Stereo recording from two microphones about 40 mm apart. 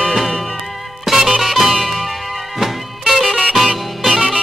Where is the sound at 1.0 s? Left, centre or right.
Centre.